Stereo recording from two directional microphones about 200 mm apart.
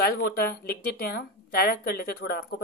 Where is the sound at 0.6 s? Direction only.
50° left (ahead or behind).